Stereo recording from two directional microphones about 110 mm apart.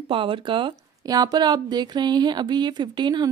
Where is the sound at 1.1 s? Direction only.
35° right (ahead or behind).